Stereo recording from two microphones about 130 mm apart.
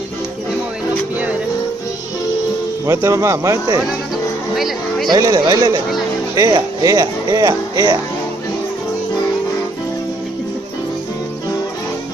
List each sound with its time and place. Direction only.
1.1 s music: 10° right (ahead or behind)
2.9 s speech: 25° right (ahead or behind)
4.6 s speech: centre (ahead or behind)
5.1 s speech: 30° right (ahead or behind)